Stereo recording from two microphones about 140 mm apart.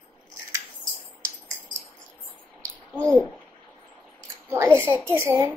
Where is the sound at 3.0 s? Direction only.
10° left (ahead or behind).